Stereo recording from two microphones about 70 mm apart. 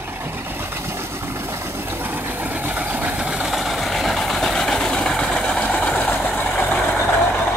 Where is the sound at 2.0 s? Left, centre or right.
Right; by 6.6 s left.